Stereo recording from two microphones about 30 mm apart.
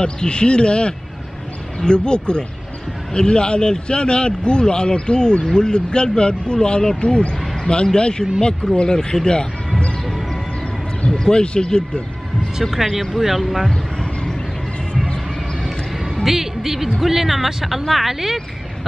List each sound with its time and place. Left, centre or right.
0.0 s a man's voice: left
11.1 s speech: left
12.8 s speech: centre
16.3 s music: centre
17.0 s speech: centre